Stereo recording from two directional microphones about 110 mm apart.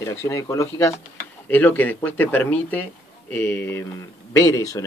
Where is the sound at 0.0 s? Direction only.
25° left (ahead or behind).